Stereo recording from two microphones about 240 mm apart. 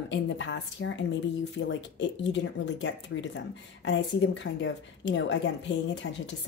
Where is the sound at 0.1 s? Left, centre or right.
Left.